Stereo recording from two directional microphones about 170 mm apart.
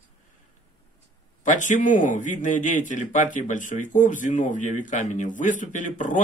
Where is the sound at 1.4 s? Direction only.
45° left (ahead or behind).